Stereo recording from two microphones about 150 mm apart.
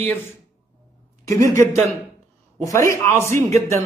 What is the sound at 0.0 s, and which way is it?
Speech, 15° left (ahead or behind).